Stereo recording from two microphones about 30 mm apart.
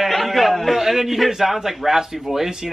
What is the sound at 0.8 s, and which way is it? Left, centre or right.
A man's voice, centre.